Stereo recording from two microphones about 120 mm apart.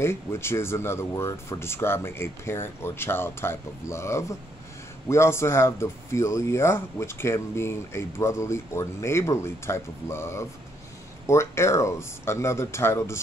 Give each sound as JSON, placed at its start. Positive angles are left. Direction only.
{"t": 0.0, "sound": "speech", "side_deg": 20}